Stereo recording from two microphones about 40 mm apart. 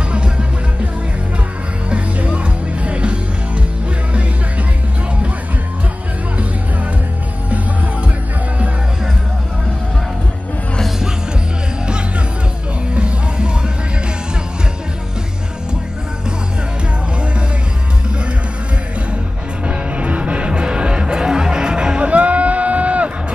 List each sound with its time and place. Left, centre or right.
0.1 s music: right
1.9 s music: right
12.9 s music: right
19.6 s music: right
22.1 s a sound: right